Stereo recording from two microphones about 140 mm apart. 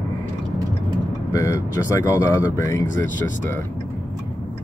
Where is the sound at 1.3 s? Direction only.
25° left (ahead or behind).